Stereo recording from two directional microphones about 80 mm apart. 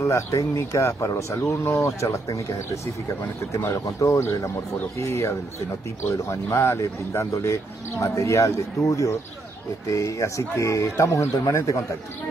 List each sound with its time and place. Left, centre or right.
0.0 s speech: left